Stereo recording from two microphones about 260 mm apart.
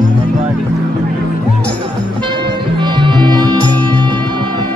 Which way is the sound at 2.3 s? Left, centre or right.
Centre.